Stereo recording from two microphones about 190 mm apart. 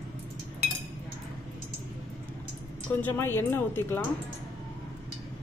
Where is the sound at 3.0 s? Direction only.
10° left (ahead or behind).